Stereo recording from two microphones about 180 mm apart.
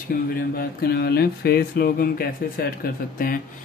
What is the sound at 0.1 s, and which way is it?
A man's voice, 55° left (ahead or behind).